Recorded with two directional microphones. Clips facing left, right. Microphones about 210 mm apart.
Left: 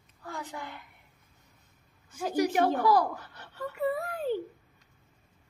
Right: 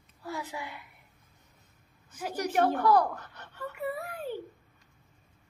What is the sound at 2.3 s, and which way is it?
A woman's voice, 10° left (ahead or behind).